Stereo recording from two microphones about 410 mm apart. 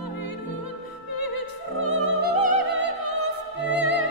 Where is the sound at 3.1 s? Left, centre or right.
Left.